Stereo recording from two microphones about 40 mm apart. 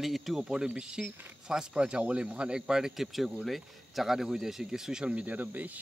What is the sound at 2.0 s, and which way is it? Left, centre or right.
Speech, right.